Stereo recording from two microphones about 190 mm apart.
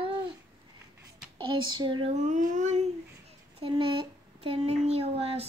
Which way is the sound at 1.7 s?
25° right (ahead or behind).